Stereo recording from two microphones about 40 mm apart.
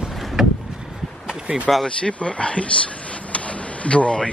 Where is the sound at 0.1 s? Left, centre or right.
Centre.